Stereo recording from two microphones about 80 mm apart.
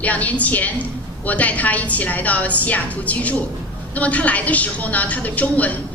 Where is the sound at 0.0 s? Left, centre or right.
Centre.